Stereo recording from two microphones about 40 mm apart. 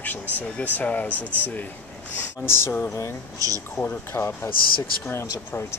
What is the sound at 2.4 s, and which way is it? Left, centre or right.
Speech, left.